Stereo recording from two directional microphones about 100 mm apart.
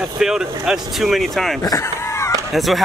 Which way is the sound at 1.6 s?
30° left (ahead or behind).